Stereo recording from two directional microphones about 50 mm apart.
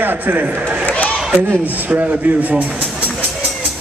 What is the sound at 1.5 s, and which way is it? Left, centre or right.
Speech, right.